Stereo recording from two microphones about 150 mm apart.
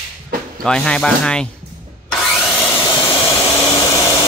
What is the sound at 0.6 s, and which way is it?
Speech, 5° left (ahead or behind).